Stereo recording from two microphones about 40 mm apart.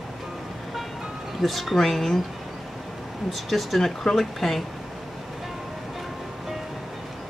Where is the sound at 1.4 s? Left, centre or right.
Centre.